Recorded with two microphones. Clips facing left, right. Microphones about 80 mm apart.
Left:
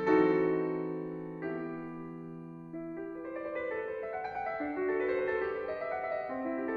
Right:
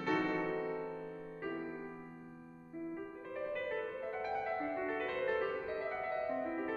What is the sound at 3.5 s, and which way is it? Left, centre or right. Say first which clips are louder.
Music: left 3 dB; left.